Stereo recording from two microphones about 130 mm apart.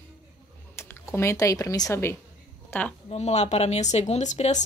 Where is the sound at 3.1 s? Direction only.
55° left (ahead or behind).